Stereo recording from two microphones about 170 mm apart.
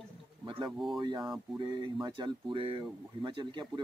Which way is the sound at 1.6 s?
25° right (ahead or behind).